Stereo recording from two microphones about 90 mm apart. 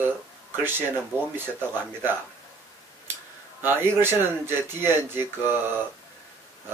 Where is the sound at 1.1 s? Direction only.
25° right (ahead or behind).